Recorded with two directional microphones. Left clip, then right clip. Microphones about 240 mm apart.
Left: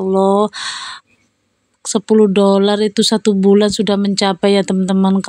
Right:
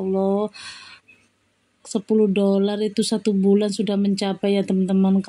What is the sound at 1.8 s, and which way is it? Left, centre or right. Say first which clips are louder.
Speech: left 8 dB; left.